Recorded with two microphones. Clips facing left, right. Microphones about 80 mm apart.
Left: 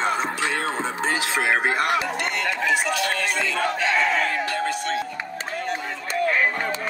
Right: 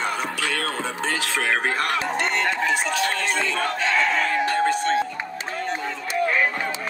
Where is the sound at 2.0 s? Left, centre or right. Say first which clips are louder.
Right 2 dB; right.